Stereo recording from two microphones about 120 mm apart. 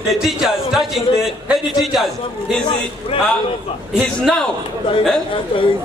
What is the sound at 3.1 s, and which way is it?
Speech, 45° left (ahead or behind).